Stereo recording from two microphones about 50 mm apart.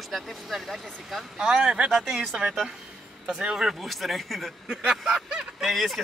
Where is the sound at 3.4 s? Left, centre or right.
Centre.